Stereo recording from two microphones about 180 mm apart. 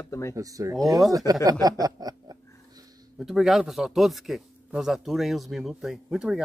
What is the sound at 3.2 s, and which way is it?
Speech, centre (ahead or behind).